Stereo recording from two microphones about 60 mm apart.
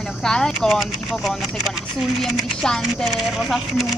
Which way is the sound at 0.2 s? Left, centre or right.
Centre.